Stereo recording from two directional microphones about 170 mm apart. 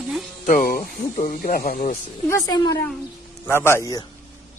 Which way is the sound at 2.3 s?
20° left (ahead or behind).